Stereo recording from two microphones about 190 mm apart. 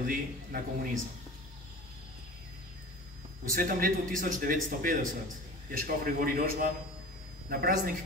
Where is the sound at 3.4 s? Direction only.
45° right (ahead or behind).